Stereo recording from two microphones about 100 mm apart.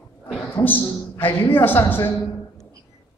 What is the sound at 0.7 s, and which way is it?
A man's voice, 20° left (ahead or behind).